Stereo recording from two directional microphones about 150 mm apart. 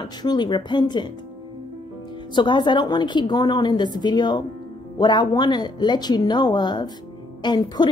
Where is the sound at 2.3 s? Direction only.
30° left (ahead or behind).